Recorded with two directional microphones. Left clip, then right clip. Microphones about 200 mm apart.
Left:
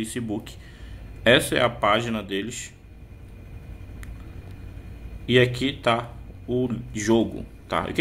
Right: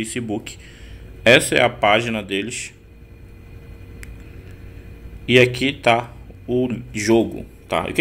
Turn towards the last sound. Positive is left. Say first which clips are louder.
# right 4 dB
turn(degrees=-5)  # may be behind; listen again after turning